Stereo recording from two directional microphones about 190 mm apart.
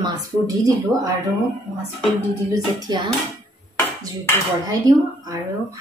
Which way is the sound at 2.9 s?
20° right (ahead or behind).